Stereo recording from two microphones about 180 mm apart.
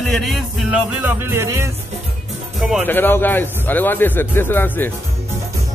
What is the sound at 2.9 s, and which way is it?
Speech, 10° left (ahead or behind).